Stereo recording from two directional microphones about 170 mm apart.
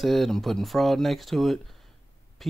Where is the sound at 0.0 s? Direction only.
Centre (ahead or behind).